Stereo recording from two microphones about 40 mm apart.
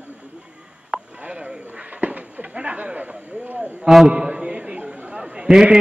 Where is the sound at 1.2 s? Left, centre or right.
Right.